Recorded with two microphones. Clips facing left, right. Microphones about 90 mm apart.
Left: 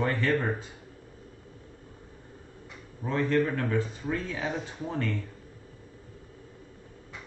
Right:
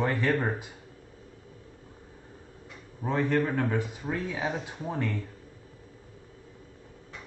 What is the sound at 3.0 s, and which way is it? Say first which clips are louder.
Speech: right 1 dB; 30° right (ahead or behind).